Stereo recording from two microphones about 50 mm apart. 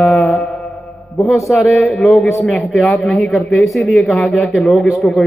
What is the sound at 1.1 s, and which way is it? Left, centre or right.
A man's voice, centre.